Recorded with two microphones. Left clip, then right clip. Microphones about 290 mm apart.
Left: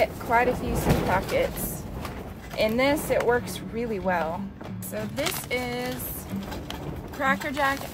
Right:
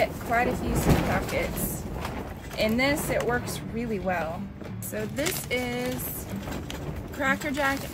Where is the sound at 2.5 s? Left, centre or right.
Left.